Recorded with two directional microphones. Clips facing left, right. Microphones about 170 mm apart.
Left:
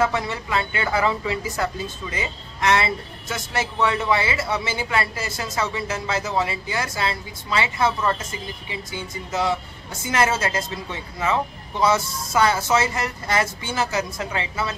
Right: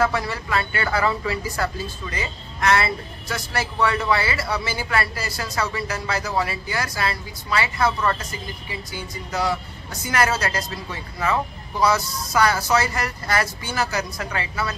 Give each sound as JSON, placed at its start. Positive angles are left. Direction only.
{"t": 0.0, "sound": "speech", "side_deg": 20}